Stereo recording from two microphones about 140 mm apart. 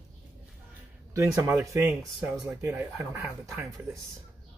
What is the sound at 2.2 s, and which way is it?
Speech, 10° right (ahead or behind).